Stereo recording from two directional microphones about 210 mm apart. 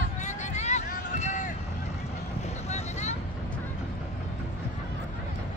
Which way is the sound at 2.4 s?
30° left (ahead or behind).